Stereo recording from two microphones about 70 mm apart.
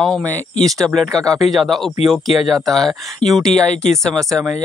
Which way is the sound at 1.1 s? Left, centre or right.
Right.